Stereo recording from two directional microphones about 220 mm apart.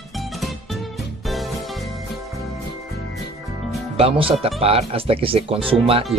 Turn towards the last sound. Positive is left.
turn(degrees=-25)  # may be behind; listen again after turning